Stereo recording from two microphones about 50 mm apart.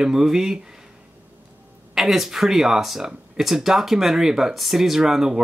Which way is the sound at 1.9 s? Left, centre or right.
Centre.